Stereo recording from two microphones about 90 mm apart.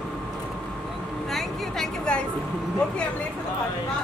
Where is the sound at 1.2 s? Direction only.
5° left (ahead or behind).